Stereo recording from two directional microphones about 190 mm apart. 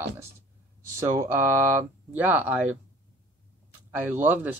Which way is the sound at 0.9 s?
15° right (ahead or behind).